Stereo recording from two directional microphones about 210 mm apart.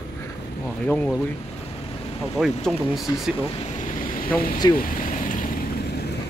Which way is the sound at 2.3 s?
Centre (ahead or behind).